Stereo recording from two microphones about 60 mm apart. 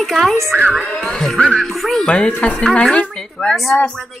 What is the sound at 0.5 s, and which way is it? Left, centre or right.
Music, right.